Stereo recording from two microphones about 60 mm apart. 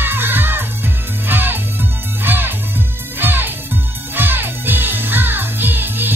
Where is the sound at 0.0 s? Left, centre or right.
Right.